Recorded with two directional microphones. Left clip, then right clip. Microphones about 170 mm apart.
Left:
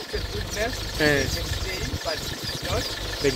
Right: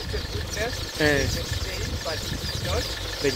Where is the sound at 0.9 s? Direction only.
20° right (ahead or behind).